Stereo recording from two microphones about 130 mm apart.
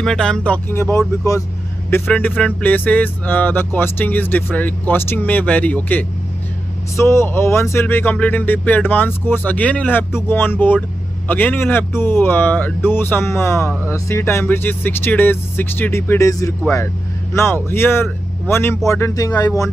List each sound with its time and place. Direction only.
0.0 s speech: 5° left (ahead or behind); by 1.4 s 25° left (ahead or behind)
2.1 s speech: 10° left (ahead or behind); by 19.7 s 25° left (ahead or behind)